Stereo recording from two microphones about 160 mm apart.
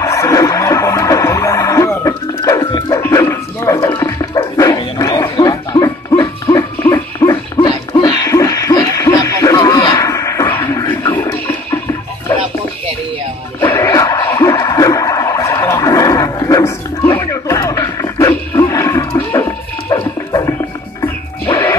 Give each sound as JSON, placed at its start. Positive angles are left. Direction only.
{"t": 0.0, "sound": "music", "side_deg": 20}
{"t": 3.0, "sound": "dog", "side_deg": 20}
{"t": 5.3, "sound": "music", "side_deg": 25}
{"t": 7.2, "sound": "a sound", "side_deg": 30}
{"t": 13.6, "sound": "music", "side_deg": 15}
{"t": 14.5, "sound": "a sound", "side_deg": 20}
{"t": 18.3, "sound": "music", "side_deg": 20}